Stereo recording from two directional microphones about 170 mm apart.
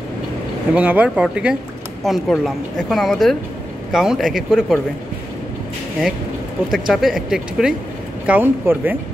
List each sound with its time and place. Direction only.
0.7 s speech: 10° right (ahead or behind)
6.7 s speech: centre (ahead or behind)